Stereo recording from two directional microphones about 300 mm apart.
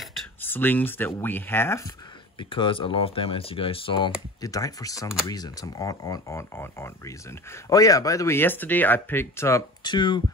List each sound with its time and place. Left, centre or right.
0.0 s speech: centre